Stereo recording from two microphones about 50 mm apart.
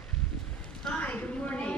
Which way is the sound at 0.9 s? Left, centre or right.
Left.